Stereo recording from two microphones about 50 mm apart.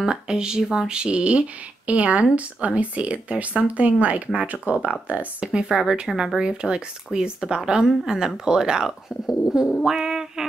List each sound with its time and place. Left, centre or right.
0.0 s speech: centre
9.5 s music: centre
9.8 s a sound: centre